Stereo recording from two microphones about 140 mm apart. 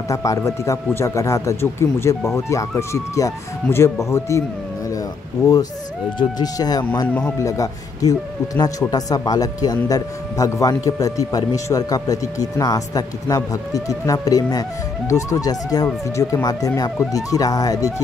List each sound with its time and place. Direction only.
0.1 s speech: 25° left (ahead or behind)
6.1 s speech: 30° left (ahead or behind)